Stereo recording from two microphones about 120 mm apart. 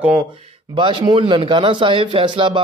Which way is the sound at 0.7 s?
40° right (ahead or behind).